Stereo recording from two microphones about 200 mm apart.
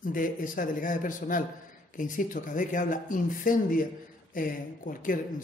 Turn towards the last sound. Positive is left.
turn(degrees=45)  # may be behind; listen again after turning